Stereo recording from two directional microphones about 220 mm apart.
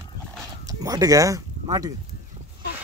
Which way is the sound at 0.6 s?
15° right (ahead or behind).